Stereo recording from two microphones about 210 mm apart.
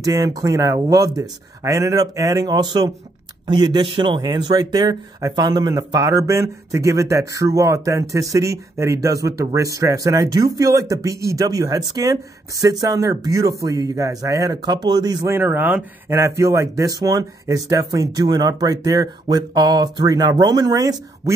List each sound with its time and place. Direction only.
0.0 s speech: 15° right (ahead or behind)